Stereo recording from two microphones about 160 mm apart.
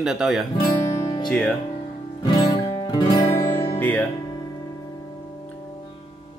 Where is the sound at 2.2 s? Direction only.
25° left (ahead or behind).